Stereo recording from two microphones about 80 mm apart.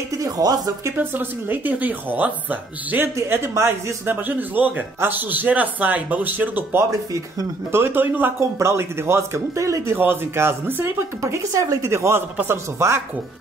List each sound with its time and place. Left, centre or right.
0.2 s a sound: right
0.9 s a man's voice: right
3.2 s a man's voice: right